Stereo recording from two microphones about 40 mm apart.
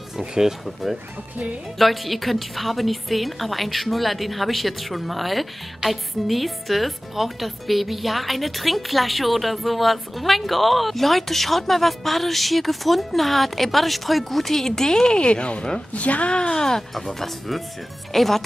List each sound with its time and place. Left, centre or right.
0.3 s speech: centre
1.8 s a woman's voice: centre; by 16.3 s left
16.3 s a woman's voice: centre